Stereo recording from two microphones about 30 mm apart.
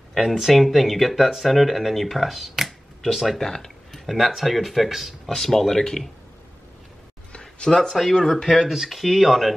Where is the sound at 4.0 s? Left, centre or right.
Centre.